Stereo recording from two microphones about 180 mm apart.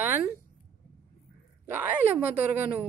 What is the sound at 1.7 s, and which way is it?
Speech, 10° right (ahead or behind).